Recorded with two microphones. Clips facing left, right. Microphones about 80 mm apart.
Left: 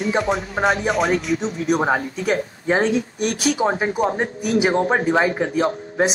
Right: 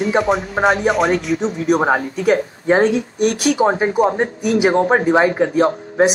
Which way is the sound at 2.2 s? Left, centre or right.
Right.